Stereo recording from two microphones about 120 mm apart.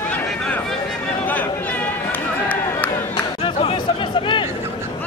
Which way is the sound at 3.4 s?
45° left (ahead or behind).